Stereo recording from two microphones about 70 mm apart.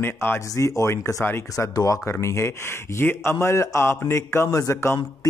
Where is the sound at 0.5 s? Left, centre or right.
Left.